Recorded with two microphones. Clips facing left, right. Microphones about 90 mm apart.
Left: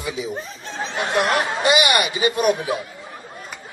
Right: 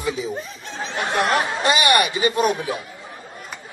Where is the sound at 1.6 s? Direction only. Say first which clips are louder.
Even; 15° left (ahead or behind).